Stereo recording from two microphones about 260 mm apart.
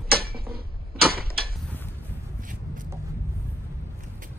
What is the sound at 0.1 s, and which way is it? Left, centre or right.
Tick-tock, right.